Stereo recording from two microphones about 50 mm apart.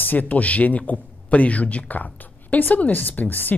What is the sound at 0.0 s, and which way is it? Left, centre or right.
Speech, left.